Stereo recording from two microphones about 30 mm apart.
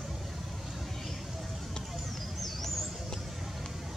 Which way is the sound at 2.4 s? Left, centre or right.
Centre.